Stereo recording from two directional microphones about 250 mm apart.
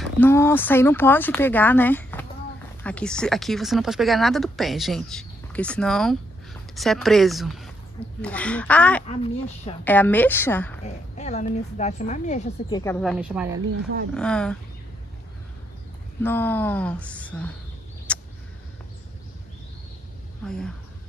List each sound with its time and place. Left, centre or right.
0.0 s a woman's voice: centre
9.0 s a woman's voice: left
9.8 s speech: centre
11.1 s a woman's voice: left
13.0 s speech: centre
16.2 s speech: centre
18.1 s a sound: centre
20.4 s speech: centre